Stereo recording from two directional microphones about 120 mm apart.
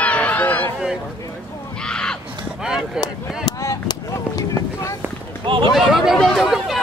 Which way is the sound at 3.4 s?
30° left (ahead or behind).